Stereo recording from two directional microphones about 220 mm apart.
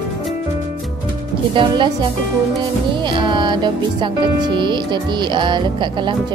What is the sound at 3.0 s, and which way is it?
Speech, 20° right (ahead or behind).